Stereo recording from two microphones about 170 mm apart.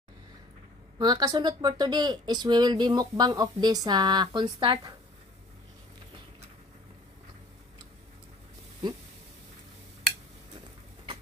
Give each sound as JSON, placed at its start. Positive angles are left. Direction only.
{"t": 0.9, "sound": "speech", "side_deg": -25}